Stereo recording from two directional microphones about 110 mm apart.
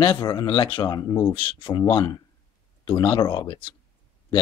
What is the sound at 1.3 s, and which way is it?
Speech, 50° left (ahead or behind).